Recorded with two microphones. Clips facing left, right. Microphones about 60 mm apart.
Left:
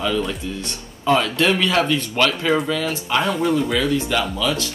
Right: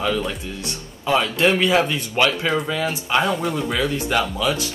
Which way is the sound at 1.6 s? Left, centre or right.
Centre.